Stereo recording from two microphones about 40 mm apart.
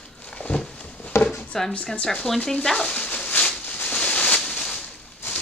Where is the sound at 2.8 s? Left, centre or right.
Left.